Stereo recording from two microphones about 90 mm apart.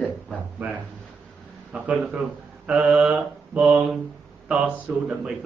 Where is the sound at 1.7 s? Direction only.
10° right (ahead or behind).